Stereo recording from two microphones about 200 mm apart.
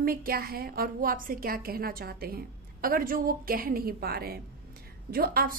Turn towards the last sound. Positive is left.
turn(degrees=-45)  # may be behind; listen again after turning